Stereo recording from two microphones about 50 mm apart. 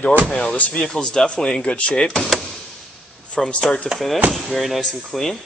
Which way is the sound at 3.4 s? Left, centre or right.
Centre.